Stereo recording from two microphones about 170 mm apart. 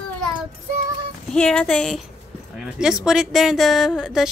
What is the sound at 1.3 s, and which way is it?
A woman's voice, 5° left (ahead or behind).